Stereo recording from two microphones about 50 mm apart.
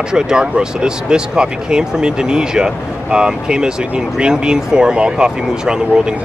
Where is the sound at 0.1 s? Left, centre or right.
Centre.